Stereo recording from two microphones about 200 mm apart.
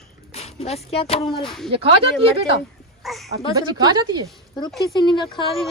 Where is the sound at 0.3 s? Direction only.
30° left (ahead or behind).